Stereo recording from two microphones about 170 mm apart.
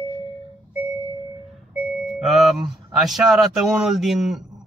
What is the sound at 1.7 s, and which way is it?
Doorbell, 5° right (ahead or behind).